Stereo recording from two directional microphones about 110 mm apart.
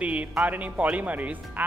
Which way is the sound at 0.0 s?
10° right (ahead or behind).